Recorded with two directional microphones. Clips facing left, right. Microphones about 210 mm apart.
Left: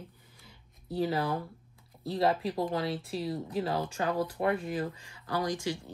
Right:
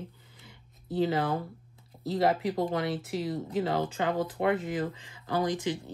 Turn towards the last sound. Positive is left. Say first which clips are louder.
# right 3 dB
turn(degrees=-20)  # may be behind; listen again after turning